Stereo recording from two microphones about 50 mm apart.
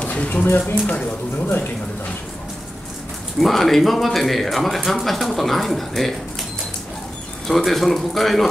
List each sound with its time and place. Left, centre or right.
0.1 s speech: left
3.3 s a man's voice: centre
7.4 s a man's voice: centre